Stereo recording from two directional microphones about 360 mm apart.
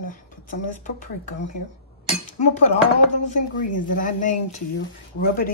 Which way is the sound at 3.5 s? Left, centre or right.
Left.